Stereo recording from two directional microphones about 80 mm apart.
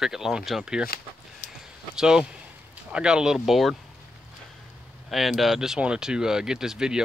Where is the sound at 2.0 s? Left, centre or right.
Centre.